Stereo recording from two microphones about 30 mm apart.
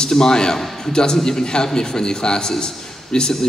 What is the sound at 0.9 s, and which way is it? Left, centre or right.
A man's voice, left.